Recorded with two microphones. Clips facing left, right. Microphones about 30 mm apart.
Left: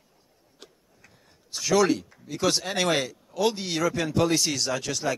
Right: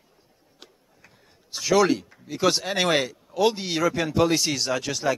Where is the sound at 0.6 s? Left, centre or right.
Centre.